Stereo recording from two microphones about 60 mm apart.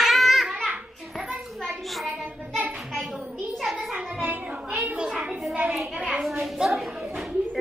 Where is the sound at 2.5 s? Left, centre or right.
Right.